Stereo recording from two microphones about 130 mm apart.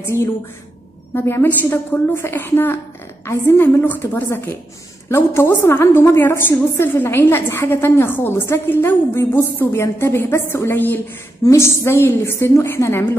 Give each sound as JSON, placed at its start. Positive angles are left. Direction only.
{"t": 0.1, "sound": "a woman's voice", "side_deg": 20}